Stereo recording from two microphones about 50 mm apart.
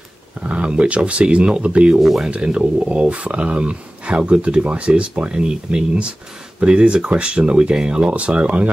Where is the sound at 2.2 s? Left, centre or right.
Right.